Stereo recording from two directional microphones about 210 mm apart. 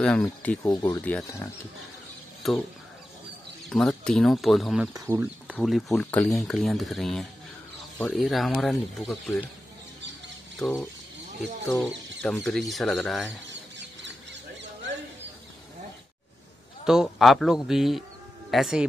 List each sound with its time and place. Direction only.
0.0 s speech: 5° left (ahead or behind)
2.4 s speech: centre (ahead or behind)
3.7 s speech: centre (ahead or behind)
4.9 s speech: 15° right (ahead or behind)
5.6 s speech: centre (ahead or behind)
10.6 s speech: 10° left (ahead or behind)
12.2 s speech: centre (ahead or behind)
13.5 s chicken: 60° right (ahead or behind)
16.8 s speech: centre (ahead or behind)